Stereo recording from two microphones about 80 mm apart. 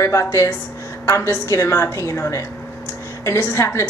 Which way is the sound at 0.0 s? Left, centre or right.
Left.